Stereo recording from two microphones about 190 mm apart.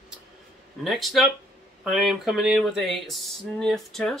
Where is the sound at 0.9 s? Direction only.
Centre (ahead or behind).